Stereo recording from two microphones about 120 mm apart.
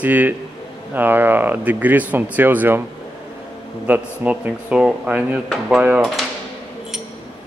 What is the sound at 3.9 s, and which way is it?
Speech, 15° right (ahead or behind).